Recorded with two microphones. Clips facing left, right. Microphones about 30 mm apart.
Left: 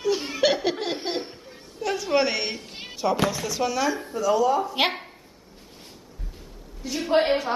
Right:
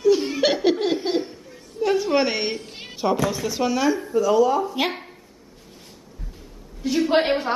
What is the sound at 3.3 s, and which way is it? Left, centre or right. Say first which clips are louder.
Speech: right 3 dB; centre.